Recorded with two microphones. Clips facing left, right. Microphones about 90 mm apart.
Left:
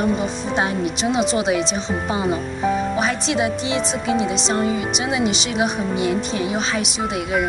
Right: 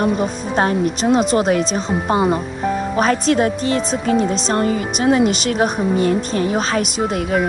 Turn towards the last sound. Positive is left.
turn(degrees=-45)  # may be behind; listen again after turning